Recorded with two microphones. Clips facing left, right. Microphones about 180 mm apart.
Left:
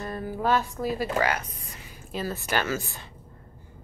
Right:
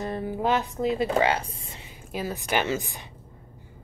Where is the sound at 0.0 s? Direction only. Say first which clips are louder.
Right 2 dB; 25° right (ahead or behind).